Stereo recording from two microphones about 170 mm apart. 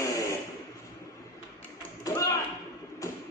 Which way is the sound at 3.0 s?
20° left (ahead or behind).